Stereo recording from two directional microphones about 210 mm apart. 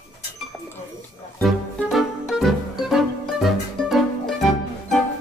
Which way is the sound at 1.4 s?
Centre (ahead or behind).